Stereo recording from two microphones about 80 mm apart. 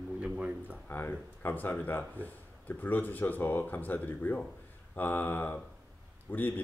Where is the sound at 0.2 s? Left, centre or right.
Centre.